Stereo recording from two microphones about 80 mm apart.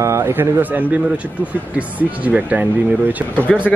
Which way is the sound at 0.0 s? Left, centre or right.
Right.